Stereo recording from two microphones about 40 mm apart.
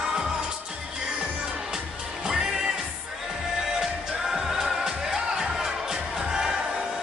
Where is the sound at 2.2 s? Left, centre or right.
Centre.